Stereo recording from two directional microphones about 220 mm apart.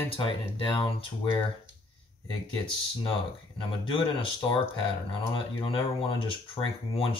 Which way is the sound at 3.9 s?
25° left (ahead or behind).